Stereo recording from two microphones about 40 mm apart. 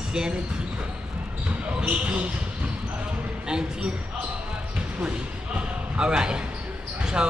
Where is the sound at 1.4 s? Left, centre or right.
Right.